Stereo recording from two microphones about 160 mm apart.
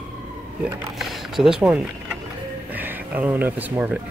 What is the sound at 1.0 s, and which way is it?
Speech, centre (ahead or behind).